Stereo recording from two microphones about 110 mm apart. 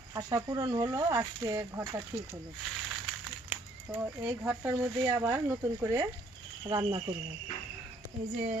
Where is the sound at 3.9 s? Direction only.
10° right (ahead or behind).